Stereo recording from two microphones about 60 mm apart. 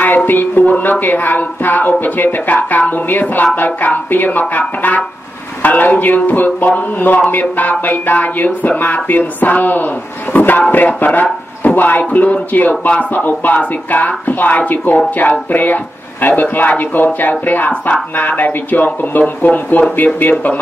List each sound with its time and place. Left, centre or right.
0.0 s music: left
10.3 s speech: left
10.7 s music: left
20.2 s speech: left